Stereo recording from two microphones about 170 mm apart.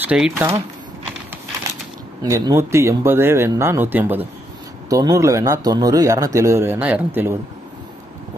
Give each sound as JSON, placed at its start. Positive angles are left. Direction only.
{"t": 0.1, "sound": "speech", "side_deg": -5}
{"t": 2.2, "sound": "speech", "side_deg": -20}